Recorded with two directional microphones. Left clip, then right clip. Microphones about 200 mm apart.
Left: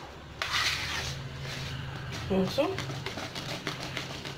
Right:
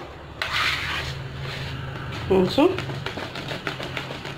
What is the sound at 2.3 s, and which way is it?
Speech, 45° right (ahead or behind).